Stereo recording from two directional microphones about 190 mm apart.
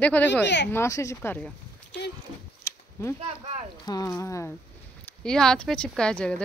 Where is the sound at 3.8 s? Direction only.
20° left (ahead or behind).